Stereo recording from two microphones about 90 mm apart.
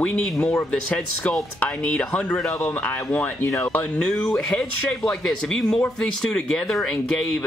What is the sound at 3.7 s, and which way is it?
Speech, 10° left (ahead or behind).